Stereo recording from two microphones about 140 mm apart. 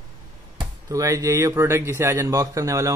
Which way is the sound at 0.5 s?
25° right (ahead or behind).